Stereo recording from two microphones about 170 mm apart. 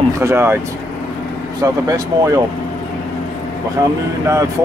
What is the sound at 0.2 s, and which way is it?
Speech, 15° right (ahead or behind).